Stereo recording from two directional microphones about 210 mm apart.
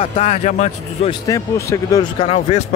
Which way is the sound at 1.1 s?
15° left (ahead or behind).